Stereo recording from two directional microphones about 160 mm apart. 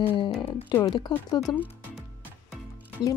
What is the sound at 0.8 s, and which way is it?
Speech, 25° left (ahead or behind).